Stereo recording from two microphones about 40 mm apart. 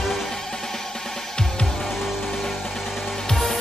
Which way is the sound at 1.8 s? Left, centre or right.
Centre.